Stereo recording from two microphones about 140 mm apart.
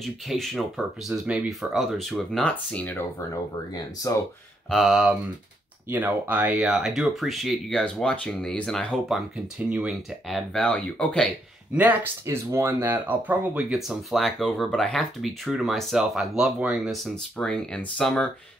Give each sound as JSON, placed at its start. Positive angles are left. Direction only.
{"t": 0.0, "sound": "speech", "side_deg": 0}
{"t": 3.7, "sound": "speech", "side_deg": 25}
{"t": 4.6, "sound": "speech", "side_deg": 0}
{"t": 5.9, "sound": "speech", "side_deg": -10}
{"t": 9.7, "sound": "speech", "side_deg": -5}
{"t": 11.7, "sound": "speech", "side_deg": -10}